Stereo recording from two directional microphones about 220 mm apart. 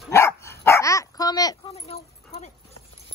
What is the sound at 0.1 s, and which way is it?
Dog, 10° left (ahead or behind).